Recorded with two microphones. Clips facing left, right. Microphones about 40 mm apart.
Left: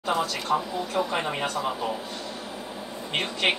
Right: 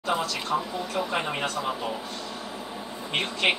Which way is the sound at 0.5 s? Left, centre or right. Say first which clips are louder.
Left 2 dB; left.